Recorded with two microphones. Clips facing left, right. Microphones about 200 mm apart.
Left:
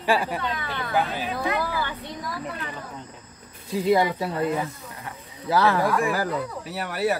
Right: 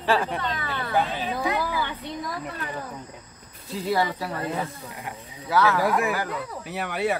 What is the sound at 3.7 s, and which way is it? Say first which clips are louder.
Speech: left 4 dB; 15° left (ahead or behind).